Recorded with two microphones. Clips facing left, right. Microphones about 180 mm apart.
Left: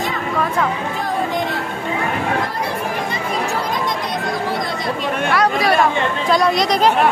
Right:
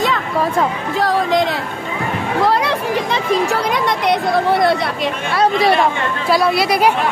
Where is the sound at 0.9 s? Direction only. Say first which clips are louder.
Right 5 dB; 90° right.